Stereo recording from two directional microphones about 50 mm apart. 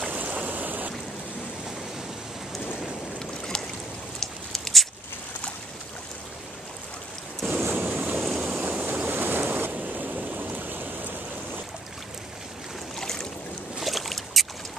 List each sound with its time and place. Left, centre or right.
0.0 s stream: right
2.8 s boat: centre
4.2 s a sound: centre
7.7 s waves: right
12.9 s boat: centre